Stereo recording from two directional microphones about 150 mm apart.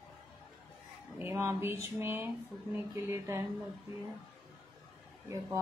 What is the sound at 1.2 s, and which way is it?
Speech, 15° right (ahead or behind).